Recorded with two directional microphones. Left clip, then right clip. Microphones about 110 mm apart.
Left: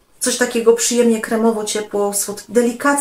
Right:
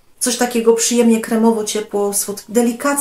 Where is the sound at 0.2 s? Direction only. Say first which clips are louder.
Even; 25° right (ahead or behind).